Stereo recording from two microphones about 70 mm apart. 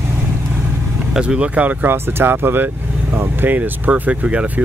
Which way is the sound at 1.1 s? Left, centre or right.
Centre.